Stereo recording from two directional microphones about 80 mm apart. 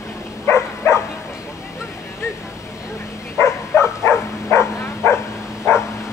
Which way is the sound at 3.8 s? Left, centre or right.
Left.